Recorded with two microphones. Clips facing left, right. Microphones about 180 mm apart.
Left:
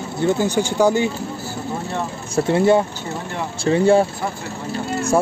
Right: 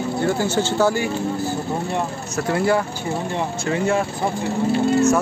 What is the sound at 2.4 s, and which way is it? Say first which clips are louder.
Speech: left 4 dB; 25° left (ahead or behind).